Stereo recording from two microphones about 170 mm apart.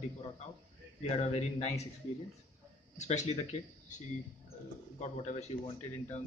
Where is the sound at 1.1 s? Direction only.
40° left (ahead or behind).